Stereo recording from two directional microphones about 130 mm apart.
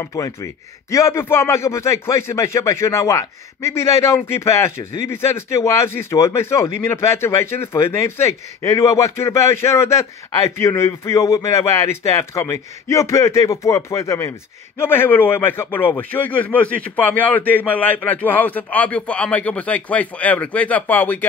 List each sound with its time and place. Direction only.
0.0 s speech: 25° left (ahead or behind)